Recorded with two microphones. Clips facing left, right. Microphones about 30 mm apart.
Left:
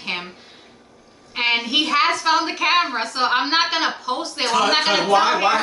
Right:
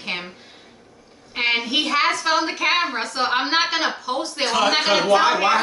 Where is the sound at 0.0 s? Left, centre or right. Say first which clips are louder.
Left 1 dB; centre.